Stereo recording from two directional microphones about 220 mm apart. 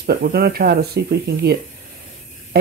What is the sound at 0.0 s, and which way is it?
Speech, 45° right (ahead or behind).